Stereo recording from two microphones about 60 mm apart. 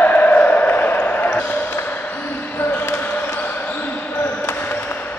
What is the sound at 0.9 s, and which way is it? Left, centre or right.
Basketball bounce, left.